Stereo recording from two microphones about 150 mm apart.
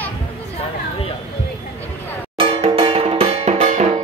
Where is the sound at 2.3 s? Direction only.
35° right (ahead or behind).